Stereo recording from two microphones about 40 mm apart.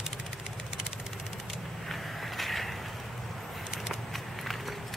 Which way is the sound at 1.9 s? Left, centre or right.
Centre.